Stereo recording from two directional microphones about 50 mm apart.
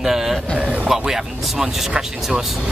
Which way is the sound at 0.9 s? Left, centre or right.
Centre.